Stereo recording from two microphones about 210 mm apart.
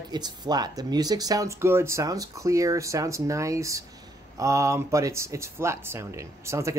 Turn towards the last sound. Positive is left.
turn(degrees=-15)  # may be behind; listen again after turning